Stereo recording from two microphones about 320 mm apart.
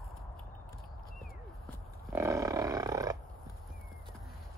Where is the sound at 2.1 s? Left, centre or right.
Centre.